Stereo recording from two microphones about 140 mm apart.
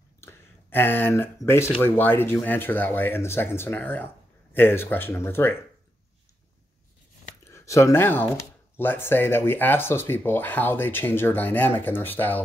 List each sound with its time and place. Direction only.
0.2 s a sound: 15° left (ahead or behind)
1.8 s speech: 15° left (ahead or behind)
7.5 s speech: 20° left (ahead or behind)